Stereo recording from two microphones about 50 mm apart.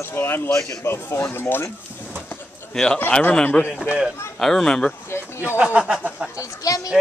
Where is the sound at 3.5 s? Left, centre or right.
Left.